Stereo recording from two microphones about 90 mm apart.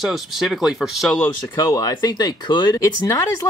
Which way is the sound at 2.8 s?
40° left (ahead or behind).